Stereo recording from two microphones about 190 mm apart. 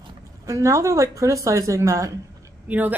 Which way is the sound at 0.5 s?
15° right (ahead or behind).